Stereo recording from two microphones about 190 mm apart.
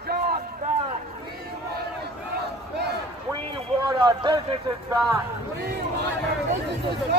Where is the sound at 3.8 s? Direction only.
25° right (ahead or behind).